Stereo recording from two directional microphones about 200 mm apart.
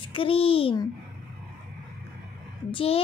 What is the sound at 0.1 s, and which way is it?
Speech, 25° left (ahead or behind).